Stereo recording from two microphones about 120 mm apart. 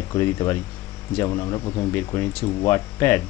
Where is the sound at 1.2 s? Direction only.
30° left (ahead or behind).